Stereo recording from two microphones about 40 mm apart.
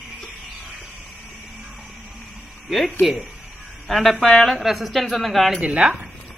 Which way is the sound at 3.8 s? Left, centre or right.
Centre.